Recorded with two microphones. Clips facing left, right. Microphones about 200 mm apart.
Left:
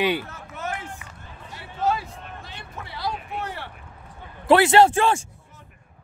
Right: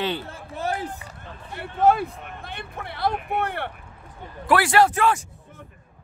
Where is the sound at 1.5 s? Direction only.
55° right (ahead or behind).